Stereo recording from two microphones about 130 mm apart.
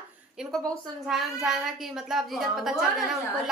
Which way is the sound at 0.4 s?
5° right (ahead or behind).